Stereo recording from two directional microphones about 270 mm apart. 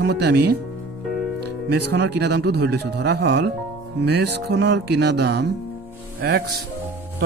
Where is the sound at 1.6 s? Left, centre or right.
Right.